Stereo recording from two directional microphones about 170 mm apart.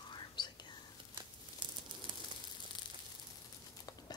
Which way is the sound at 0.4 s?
25° left (ahead or behind).